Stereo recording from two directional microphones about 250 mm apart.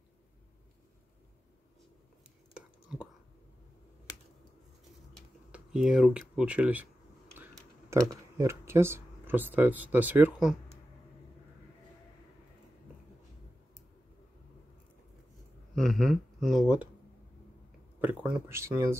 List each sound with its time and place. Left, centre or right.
2.5 s whispering: centre
5.1 s a sound: centre
7.3 s speech: centre
15.7 s speech: centre
18.0 s speech: centre